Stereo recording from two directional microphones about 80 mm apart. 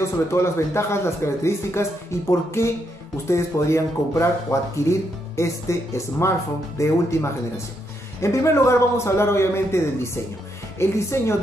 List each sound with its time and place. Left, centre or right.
0.3 s speech: left